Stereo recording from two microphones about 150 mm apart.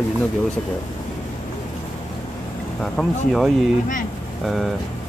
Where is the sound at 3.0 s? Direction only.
5° left (ahead or behind).